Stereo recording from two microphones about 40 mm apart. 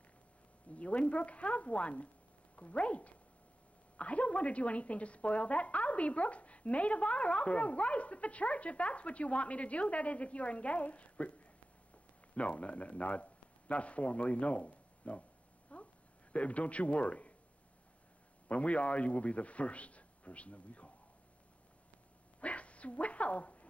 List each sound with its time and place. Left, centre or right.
0.7 s speech: left
15.7 s a sound: left
16.3 s speech: left
18.5 s speech: left
22.4 s dog: left